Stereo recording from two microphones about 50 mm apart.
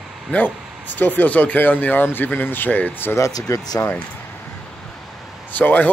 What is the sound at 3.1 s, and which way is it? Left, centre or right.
Speech, left.